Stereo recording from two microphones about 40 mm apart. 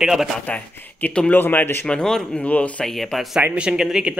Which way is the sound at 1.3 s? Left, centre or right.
Left.